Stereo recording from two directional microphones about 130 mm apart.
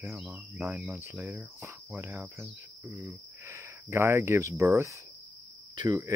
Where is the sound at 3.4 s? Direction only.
20° right (ahead or behind).